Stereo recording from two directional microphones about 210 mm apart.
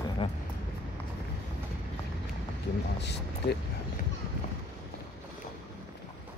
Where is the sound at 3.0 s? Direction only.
55° left (ahead or behind).